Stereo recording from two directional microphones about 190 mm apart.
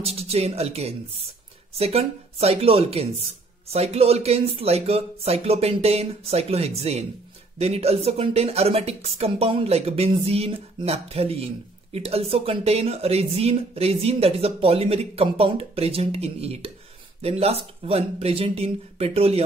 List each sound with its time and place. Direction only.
0.0 s speech: 30° right (ahead or behind)